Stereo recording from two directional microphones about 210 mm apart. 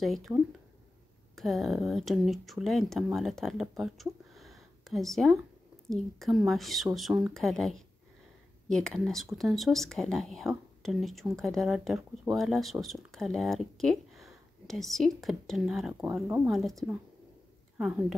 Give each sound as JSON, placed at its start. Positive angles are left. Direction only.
{"t": 0.0, "sound": "speech", "side_deg": 0}